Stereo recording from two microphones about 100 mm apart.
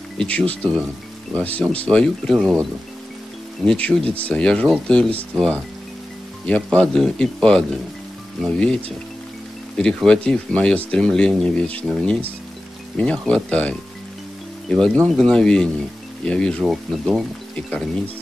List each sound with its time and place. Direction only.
0.2 s speech: 10° left (ahead or behind)
3.6 s speech: 10° left (ahead or behind)
9.8 s speech: 10° left (ahead or behind)
16.6 s speech: centre (ahead or behind)